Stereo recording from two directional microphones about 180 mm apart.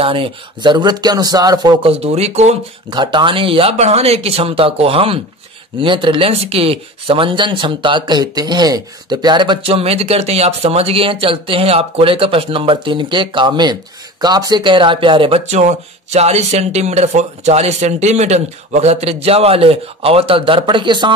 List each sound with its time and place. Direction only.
0.0 s speech: 30° right (ahead or behind)
2.9 s speech: 25° right (ahead or behind)